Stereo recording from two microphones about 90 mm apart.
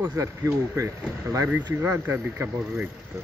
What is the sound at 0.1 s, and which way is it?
Speech, 35° right (ahead or behind).